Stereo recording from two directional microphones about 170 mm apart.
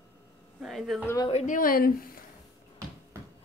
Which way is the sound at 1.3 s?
45° left (ahead or behind).